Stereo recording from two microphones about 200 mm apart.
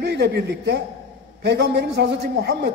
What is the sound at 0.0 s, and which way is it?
A man's voice, 55° right (ahead or behind).